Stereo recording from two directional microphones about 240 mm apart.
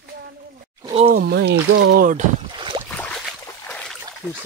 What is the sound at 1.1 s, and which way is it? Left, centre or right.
Speech, right.